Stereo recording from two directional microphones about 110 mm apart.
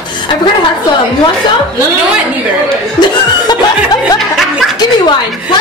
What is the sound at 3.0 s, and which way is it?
Chuckle, 40° left (ahead or behind).